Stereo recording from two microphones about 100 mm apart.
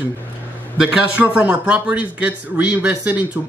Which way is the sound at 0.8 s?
15° right (ahead or behind).